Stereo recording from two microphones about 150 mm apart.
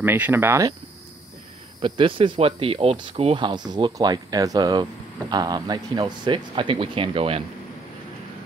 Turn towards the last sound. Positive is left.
turn(degrees=-40)  # may be behind; listen again after turning